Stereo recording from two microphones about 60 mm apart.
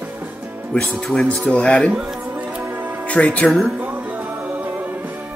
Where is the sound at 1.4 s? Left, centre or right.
Centre.